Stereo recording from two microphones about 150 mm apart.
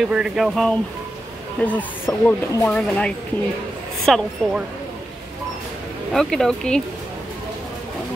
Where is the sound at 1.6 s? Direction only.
10° left (ahead or behind).